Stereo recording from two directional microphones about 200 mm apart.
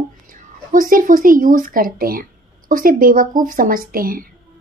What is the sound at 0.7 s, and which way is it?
A woman's voice, 45° right (ahead or behind).